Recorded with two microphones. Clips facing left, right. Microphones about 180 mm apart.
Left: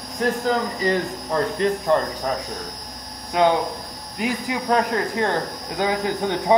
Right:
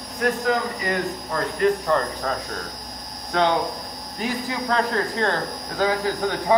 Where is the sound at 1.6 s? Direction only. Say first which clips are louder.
Right 4 dB; 20° left (ahead or behind).